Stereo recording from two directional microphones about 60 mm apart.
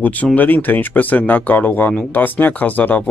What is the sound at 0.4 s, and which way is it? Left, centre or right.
Speech, left.